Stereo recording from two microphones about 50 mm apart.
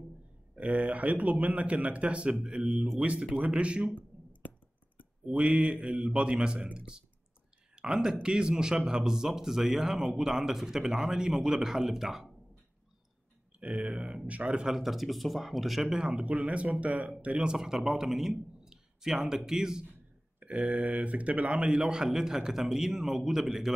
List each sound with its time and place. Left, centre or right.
0.6 s a man's voice: right
2.4 s a man's voice: centre
3.9 s clicking: left
5.2 s speech: centre
13.7 s speech: centre
14.2 s a man's voice: right
14.8 s speech: centre
16.1 s a man's voice: right
17.6 s a man's voice: centre
20.3 s a man's voice: right; by 23.7 s centre